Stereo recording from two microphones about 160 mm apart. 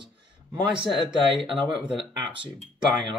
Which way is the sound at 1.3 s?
30° right (ahead or behind).